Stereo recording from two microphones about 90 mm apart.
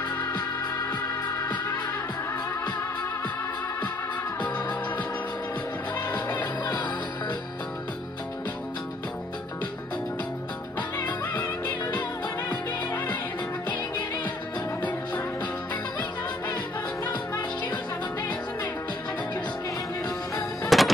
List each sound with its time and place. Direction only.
4.4 s music: 15° left (ahead or behind)
6.1 s music: 20° left (ahead or behind)
6.6 s music: 50° left (ahead or behind)
12.4 s music: 20° left (ahead or behind)
20.7 s music: centre (ahead or behind)